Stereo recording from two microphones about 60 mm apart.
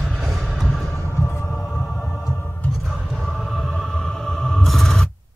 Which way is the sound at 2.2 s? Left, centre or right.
Left.